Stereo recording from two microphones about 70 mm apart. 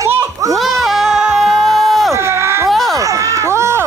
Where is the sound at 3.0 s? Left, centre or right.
Right.